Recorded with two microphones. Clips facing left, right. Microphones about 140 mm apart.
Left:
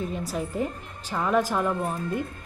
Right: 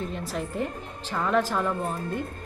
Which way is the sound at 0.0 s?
5° left (ahead or behind).